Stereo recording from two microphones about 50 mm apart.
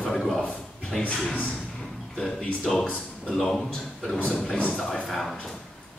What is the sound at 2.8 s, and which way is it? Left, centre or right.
Speech, left.